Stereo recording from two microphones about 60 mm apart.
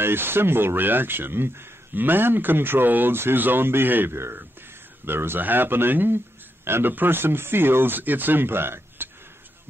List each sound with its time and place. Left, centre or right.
0.0 s speech: right